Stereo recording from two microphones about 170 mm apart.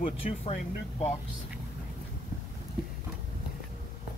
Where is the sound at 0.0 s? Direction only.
35° left (ahead or behind).